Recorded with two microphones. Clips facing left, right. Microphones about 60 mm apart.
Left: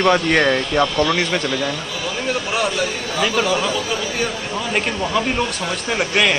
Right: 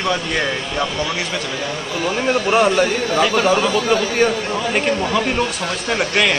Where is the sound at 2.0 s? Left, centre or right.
Right.